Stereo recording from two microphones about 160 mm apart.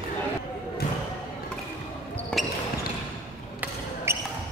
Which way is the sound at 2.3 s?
5° left (ahead or behind).